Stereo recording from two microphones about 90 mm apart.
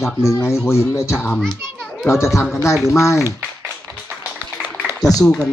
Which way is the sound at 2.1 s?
35° left (ahead or behind).